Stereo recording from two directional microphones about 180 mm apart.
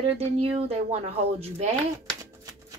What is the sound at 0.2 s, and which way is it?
Speech, 35° right (ahead or behind).